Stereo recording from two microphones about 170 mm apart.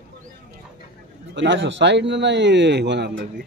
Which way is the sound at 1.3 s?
90° right.